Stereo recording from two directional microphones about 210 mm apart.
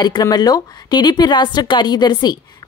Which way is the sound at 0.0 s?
20° left (ahead or behind).